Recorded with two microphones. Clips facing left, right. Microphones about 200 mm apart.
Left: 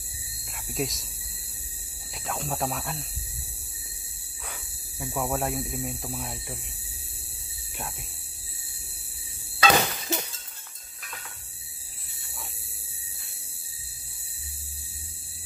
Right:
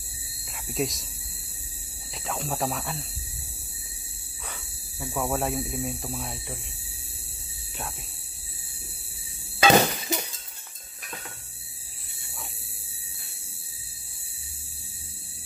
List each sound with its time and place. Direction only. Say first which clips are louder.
0.7 s speech: right 2 dB; centre (ahead or behind)
2.2 s speech: right 1 dB; centre (ahead or behind)
5.0 s speech: right 1 dB; 10° left (ahead or behind)
9.6 s hammer: right 4 dB; 15° right (ahead or behind)